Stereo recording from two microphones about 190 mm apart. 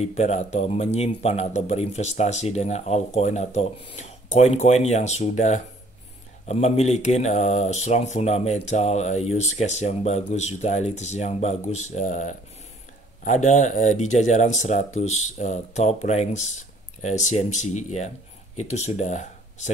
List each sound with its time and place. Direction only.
0.0 s speech: 35° left (ahead or behind)